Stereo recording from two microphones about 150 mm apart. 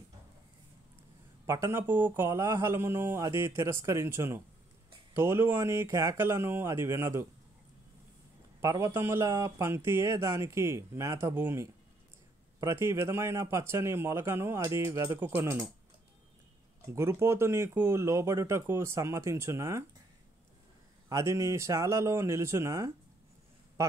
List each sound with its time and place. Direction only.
1.4 s a man's voice: 20° right (ahead or behind)
8.5 s a man's voice: 20° right (ahead or behind)
16.8 s speech: 20° right (ahead or behind)
21.1 s speech: 20° right (ahead or behind)